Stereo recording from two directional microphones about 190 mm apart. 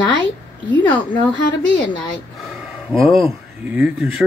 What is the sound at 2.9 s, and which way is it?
Speech, centre (ahead or behind).